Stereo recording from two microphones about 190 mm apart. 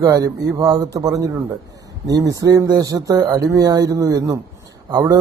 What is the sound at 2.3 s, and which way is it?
Speech, 20° right (ahead or behind).